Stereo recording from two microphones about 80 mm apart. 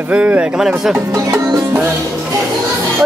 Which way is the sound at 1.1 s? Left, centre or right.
Right.